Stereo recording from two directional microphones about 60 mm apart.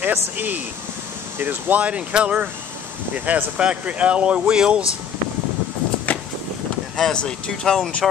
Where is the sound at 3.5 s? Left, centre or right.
Centre.